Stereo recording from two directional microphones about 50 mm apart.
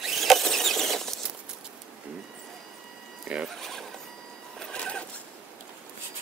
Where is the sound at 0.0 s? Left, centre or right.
Centre.